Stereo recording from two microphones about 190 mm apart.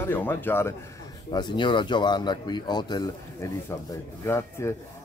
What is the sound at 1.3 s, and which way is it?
Speech, 25° left (ahead or behind).